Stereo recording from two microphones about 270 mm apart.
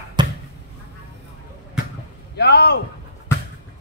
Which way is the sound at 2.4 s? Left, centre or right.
Left.